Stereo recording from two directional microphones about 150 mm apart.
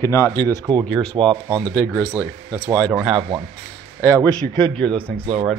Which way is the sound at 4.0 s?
15° left (ahead or behind).